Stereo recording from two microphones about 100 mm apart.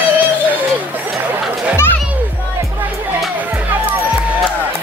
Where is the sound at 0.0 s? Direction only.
15° right (ahead or behind).